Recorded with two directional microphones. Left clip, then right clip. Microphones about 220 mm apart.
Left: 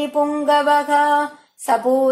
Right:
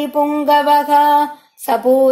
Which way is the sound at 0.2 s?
40° right (ahead or behind).